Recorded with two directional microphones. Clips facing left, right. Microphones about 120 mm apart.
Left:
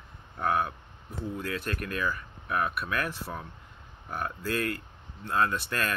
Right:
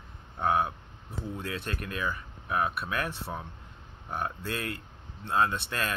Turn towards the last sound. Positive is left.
turn(degrees=-20)  # may be behind; listen again after turning